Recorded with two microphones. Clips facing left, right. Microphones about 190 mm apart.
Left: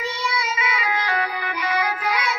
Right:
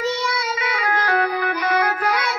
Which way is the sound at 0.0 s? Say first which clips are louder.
Right 4 dB; 55° right (ahead or behind).